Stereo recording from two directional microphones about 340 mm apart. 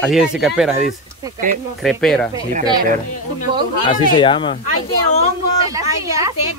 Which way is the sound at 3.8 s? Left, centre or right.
Centre.